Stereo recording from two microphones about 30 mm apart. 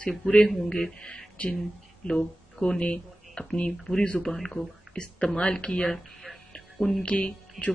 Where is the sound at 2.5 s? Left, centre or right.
Centre.